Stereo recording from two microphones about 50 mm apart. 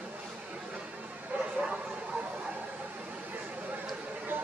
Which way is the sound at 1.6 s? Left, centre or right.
Right.